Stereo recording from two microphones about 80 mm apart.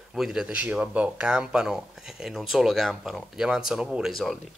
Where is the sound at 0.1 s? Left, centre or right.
Centre.